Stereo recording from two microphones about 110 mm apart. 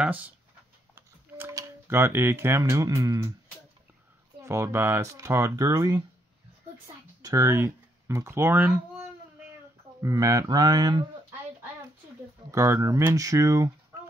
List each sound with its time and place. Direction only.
0.0 s speech: 15° right (ahead or behind)
1.5 s speech: 30° right (ahead or behind)
4.4 s speech: 25° right (ahead or behind)
7.2 s speech: 30° right (ahead or behind)
10.0 s speech: 30° right (ahead or behind)
12.4 s speech: 25° right (ahead or behind)